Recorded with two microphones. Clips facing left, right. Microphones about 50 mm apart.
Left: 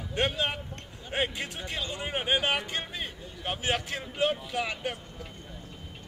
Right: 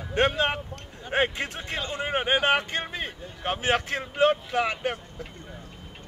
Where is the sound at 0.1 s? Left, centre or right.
Right.